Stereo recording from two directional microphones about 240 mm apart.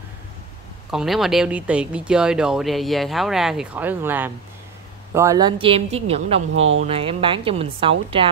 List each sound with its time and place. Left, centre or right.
0.8 s a woman's voice: centre; by 6.4 s right
6.5 s speech: right
6.8 s a woman's voice: right